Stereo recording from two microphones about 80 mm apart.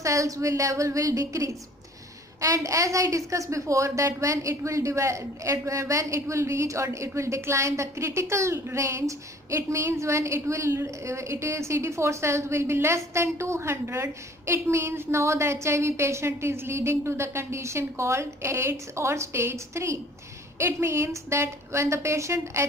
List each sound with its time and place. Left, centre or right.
0.0 s a woman's voice: right